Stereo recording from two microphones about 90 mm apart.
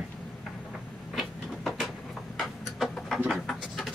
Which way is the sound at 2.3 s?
Centre (ahead or behind).